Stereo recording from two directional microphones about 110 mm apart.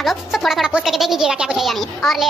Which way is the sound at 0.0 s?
Centre (ahead or behind).